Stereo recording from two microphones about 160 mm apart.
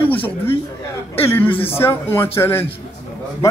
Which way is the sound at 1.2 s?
15° left (ahead or behind).